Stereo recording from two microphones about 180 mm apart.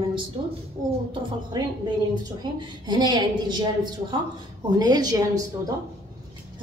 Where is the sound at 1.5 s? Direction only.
20° right (ahead or behind).